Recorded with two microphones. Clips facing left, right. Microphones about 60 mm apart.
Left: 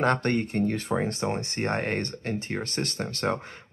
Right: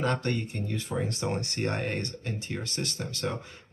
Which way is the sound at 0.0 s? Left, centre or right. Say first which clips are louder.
Left 5 dB; left.